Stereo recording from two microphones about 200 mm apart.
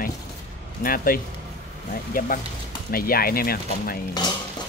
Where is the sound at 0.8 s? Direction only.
45° left (ahead or behind).